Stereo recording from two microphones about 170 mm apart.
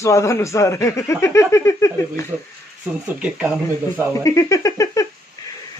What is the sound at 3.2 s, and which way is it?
Speech, 5° right (ahead or behind).